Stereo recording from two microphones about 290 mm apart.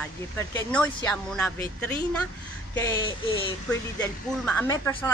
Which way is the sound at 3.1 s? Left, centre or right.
Centre.